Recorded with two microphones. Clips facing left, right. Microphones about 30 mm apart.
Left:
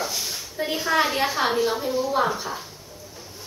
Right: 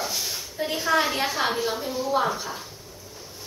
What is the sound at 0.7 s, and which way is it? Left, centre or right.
A woman's voice, centre.